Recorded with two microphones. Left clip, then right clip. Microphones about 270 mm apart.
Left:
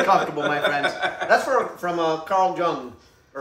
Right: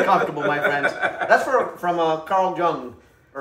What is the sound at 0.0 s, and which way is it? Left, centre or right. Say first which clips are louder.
A man's voice: right 1 dB; centre.